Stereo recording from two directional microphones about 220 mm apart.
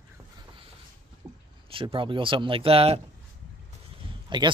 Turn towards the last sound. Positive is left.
turn(degrees=-20)  # may be behind; listen again after turning